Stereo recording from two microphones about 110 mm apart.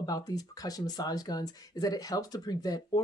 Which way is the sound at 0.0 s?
35° left (ahead or behind).